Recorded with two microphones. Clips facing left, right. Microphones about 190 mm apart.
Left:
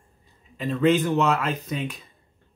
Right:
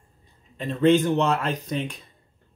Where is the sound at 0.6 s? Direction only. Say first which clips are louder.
Right 2 dB; centre (ahead or behind).